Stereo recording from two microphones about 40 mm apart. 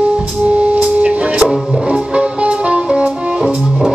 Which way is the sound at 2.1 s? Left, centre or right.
Right.